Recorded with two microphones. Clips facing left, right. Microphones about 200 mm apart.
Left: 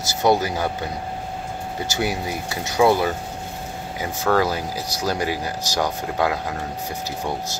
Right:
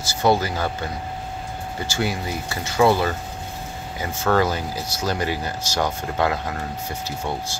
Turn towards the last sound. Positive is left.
turn(degrees=15)  # may be behind; listen again after turning